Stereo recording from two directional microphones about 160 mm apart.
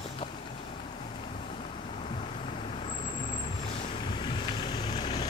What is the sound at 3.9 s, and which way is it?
Boat, 30° left (ahead or behind).